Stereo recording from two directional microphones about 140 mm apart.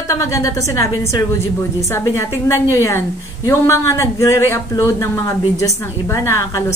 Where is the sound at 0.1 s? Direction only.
20° left (ahead or behind).